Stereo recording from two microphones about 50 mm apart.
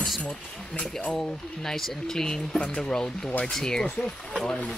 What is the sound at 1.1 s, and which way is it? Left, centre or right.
Speech, centre.